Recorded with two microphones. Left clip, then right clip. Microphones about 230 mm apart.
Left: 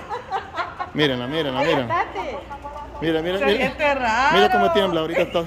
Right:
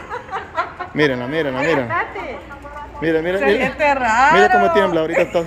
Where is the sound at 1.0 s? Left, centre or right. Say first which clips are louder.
Right 4 dB; centre.